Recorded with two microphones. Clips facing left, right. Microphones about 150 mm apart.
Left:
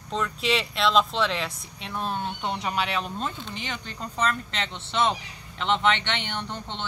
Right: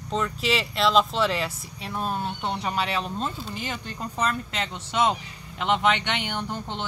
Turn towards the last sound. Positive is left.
turn(degrees=-10)  # may be behind; listen again after turning